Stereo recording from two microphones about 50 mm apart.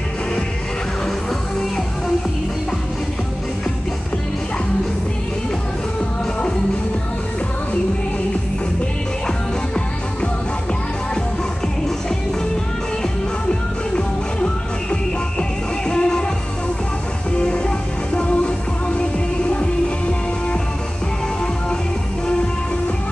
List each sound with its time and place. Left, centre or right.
13.9 s music: centre
17.4 s music: centre